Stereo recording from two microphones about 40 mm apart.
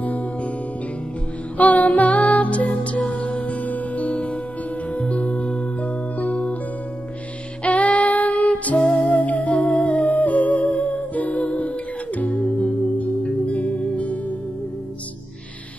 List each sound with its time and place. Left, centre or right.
0.0 s music: left
1.6 s music: left
7.6 s child singing: left
8.8 s music: left
9.1 s music: left